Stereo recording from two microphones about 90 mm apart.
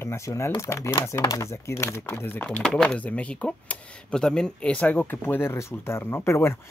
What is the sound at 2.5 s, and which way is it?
Speech, 5° left (ahead or behind).